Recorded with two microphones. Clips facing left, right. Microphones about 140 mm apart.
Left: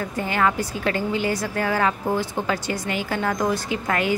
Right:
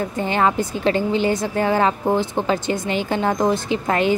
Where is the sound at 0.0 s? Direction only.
25° right (ahead or behind).